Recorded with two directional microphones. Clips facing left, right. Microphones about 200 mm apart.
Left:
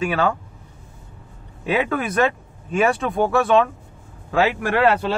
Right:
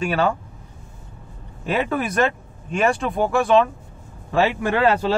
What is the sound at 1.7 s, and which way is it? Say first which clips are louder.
Speech: left 1 dB; centre (ahead or behind).